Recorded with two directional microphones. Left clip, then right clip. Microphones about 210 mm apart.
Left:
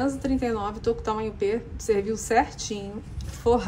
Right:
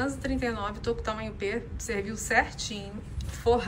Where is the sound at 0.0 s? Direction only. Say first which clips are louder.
Left 4 dB; 30° left (ahead or behind).